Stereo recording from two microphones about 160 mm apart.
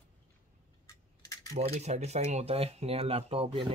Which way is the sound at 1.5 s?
40° right (ahead or behind).